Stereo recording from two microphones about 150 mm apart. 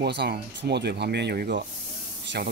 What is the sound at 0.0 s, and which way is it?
Speech, 90° right.